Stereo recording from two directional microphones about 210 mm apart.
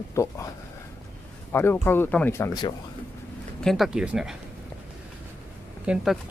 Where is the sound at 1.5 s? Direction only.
10° left (ahead or behind).